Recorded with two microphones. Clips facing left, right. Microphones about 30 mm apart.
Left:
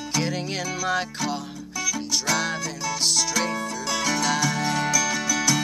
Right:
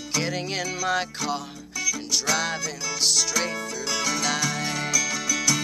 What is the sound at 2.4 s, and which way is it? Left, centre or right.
Music, centre.